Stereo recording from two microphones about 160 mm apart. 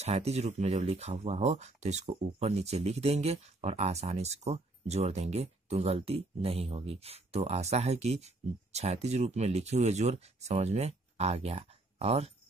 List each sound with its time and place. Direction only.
0.0 s speech: 40° right (ahead or behind)